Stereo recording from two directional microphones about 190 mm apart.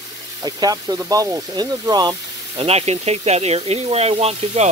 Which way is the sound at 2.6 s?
30° right (ahead or behind).